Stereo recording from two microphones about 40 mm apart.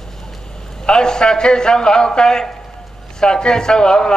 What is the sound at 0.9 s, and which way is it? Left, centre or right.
A man's voice, centre.